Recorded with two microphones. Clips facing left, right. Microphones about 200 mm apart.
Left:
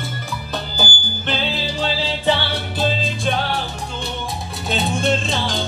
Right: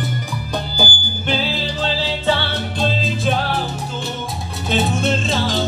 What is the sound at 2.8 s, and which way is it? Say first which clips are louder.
Music: right 1 dB; centre (ahead or behind).